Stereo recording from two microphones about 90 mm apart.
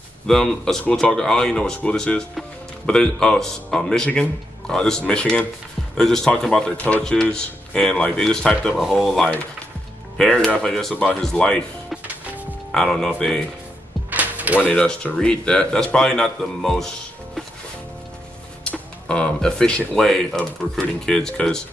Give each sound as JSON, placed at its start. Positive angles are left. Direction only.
{"t": 0.3, "sound": "speech", "side_deg": 5}
{"t": 12.7, "sound": "speech", "side_deg": 5}
{"t": 14.1, "sound": "music", "side_deg": -15}
{"t": 14.6, "sound": "speech", "side_deg": 15}
{"t": 18.6, "sound": "music", "side_deg": 10}
{"t": 19.9, "sound": "speech", "side_deg": 5}